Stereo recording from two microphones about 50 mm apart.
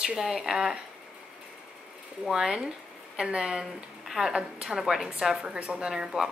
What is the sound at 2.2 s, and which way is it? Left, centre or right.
A woman's voice, centre.